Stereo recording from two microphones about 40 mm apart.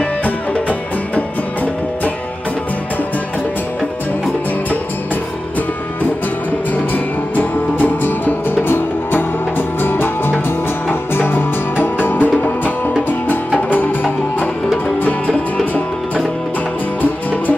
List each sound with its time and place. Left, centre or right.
0.2 s music: left
6.7 s music: left
8.6 s music: left
11.8 s music: left
15.0 s music: left
17.0 s music: left